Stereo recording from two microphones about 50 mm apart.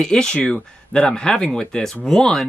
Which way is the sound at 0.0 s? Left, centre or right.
Centre.